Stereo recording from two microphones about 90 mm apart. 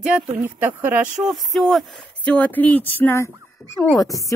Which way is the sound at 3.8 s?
40° left (ahead or behind).